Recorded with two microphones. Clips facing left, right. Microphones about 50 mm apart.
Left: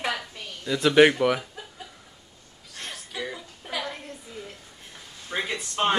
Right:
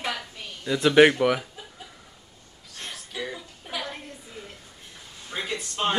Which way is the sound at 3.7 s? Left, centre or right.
Left.